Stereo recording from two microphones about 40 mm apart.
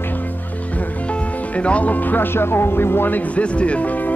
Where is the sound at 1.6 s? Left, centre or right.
Left.